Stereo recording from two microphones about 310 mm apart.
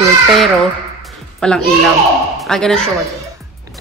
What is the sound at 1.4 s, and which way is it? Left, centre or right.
A child's voice, centre.